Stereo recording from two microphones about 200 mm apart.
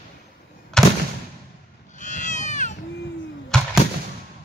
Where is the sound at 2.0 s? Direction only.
40° left (ahead or behind).